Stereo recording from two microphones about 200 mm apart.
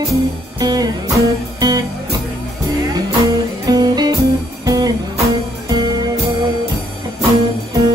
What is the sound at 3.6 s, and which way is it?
Music, 20° right (ahead or behind).